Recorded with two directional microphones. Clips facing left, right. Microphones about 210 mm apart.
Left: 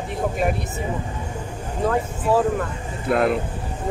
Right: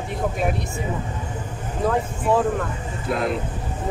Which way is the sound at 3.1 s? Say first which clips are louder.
Left 5 dB; 55° left (ahead or behind).